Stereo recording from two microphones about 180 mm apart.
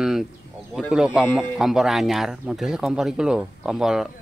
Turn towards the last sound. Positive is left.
turn(degrees=0)  # may be behind; listen again after turning